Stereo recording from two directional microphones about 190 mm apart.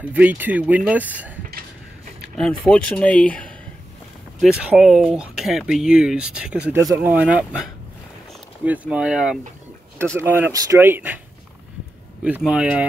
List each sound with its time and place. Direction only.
0.0 s speech: 10° right (ahead or behind)
2.3 s speech: 5° left (ahead or behind)
8.6 s speech: 5° right (ahead or behind)
12.2 s speech: 5° right (ahead or behind)